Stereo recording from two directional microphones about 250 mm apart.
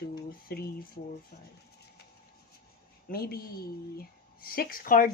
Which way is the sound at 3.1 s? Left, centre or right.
Left.